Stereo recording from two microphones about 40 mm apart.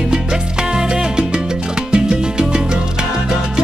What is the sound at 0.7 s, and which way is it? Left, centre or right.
Salsa music, centre.